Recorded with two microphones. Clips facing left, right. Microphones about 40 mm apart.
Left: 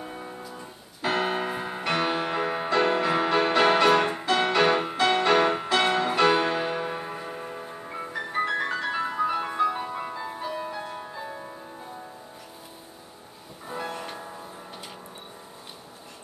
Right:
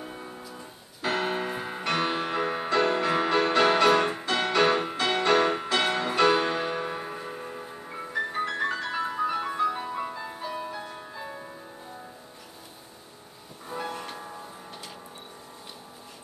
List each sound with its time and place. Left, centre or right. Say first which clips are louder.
0.0 s music: left 2 dB; centre
13.7 s music: left 1 dB; centre